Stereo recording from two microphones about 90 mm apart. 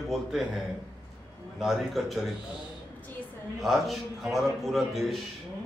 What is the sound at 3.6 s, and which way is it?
A man's voice, centre (ahead or behind).